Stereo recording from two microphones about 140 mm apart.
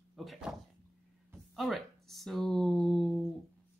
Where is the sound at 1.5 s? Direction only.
Centre (ahead or behind).